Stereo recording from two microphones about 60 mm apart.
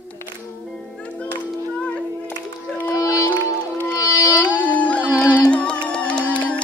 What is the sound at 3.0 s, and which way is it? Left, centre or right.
Music, left.